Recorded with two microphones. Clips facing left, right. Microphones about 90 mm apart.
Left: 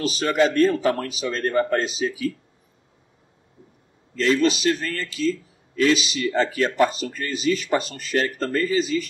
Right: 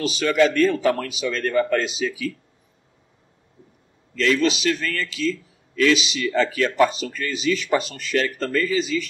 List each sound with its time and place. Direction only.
0.0 s a man's voice: 35° left (ahead or behind)
4.1 s a man's voice: 35° left (ahead or behind)